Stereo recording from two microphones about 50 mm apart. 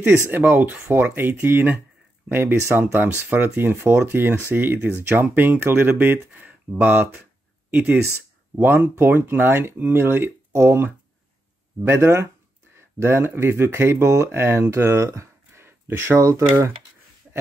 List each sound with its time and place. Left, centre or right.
0.0 s speech: right
3.0 s speech: right
8.5 s speech: right